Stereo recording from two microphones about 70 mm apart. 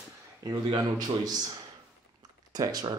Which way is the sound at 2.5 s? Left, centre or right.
Right.